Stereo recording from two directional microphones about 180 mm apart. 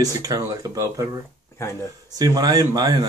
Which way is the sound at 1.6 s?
15° left (ahead or behind).